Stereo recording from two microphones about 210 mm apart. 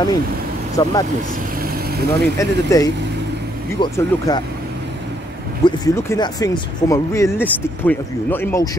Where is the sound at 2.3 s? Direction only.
15° left (ahead or behind).